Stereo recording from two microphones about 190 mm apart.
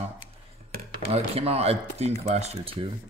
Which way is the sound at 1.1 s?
30° right (ahead or behind).